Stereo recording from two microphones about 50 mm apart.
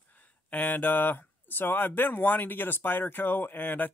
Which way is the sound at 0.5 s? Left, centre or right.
Left.